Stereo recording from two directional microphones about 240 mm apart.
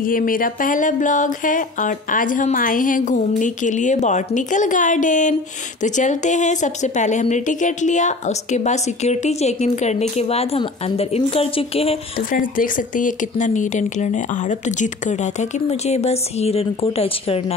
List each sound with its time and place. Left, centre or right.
0.0 s speech: left
12.3 s speech: left